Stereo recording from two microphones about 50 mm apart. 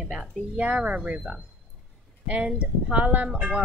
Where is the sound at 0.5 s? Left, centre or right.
Right.